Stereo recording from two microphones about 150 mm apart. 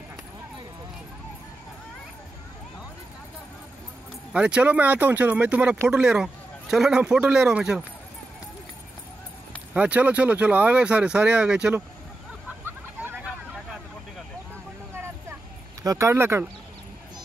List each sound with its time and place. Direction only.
4.3 s speech: 5° right (ahead or behind)
9.8 s speech: 10° right (ahead or behind)
12.6 s vehicle: 10° right (ahead or behind)
15.8 s speech: 20° right (ahead or behind)